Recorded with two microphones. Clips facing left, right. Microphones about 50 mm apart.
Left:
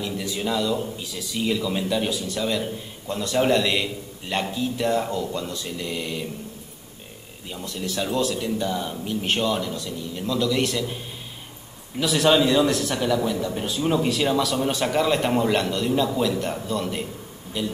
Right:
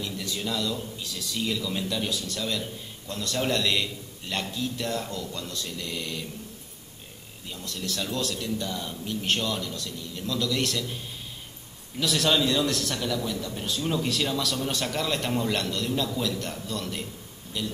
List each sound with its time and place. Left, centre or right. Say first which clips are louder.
0.0 s a man's voice: left 5 dB; centre
7.4 s a man's voice: left 4 dB; centre
12.0 s a man's voice: left 5 dB; centre